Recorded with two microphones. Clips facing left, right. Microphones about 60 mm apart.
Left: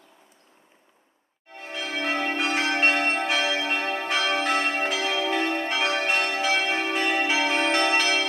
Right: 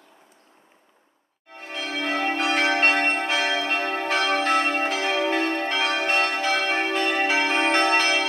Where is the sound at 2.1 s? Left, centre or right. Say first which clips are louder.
Right 3 dB; right.